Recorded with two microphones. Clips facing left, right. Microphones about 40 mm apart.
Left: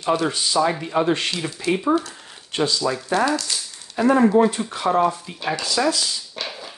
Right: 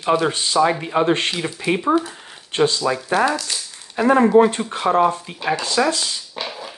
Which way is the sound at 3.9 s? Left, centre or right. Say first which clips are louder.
Right 2 dB; right.